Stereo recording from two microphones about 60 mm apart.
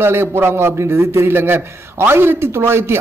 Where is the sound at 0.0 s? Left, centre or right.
Right.